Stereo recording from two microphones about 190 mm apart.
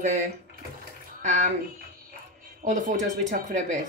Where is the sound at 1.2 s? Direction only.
40° right (ahead or behind).